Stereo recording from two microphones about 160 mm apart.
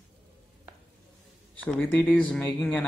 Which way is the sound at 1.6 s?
10° left (ahead or behind).